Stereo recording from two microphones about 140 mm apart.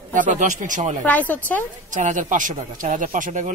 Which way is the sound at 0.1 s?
65° right (ahead or behind).